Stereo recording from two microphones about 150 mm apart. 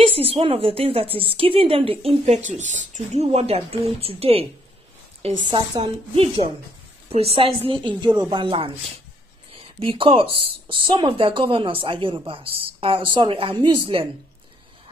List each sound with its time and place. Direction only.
0.2 s speech: 40° right (ahead or behind)
9.8 s speech: 35° right (ahead or behind)